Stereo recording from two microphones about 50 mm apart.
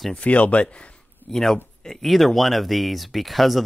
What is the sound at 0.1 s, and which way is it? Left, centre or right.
Speech, left.